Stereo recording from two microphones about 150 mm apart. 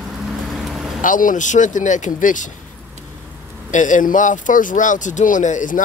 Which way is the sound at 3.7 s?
55° left (ahead or behind).